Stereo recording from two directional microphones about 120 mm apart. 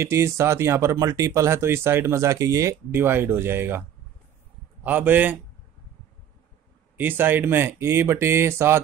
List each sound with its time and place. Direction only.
0.0 s speech: 25° right (ahead or behind)
4.8 s a man's voice: 15° right (ahead or behind)
7.0 s speech: 15° right (ahead or behind)